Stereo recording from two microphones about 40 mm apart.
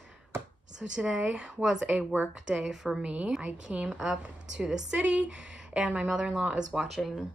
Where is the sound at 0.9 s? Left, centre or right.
Right.